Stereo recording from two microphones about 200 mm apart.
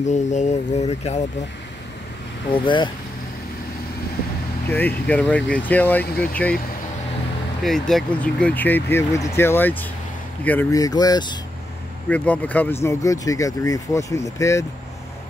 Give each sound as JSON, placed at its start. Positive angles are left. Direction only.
{"t": 0.0, "sound": "speech", "side_deg": 35}
{"t": 2.5, "sound": "speech", "side_deg": 25}
{"t": 4.6, "sound": "speech", "side_deg": 10}
{"t": 7.6, "sound": "speech", "side_deg": 0}
{"t": 12.1, "sound": "speech", "side_deg": 10}